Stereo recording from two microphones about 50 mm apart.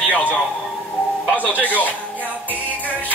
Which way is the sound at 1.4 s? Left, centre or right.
Left.